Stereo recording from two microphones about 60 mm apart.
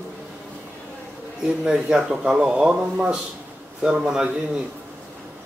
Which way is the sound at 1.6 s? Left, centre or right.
Centre.